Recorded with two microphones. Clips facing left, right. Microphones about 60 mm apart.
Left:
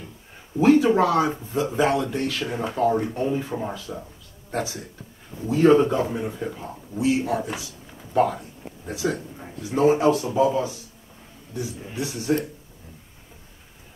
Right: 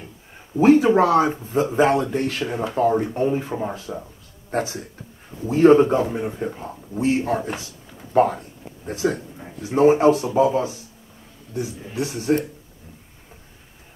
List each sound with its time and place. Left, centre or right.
0.6 s speech: right
3.9 s a man's voice: centre
4.5 s speech: right
12.0 s speech: right